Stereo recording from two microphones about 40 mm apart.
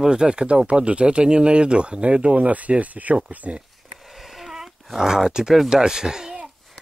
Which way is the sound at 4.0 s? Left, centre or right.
Centre.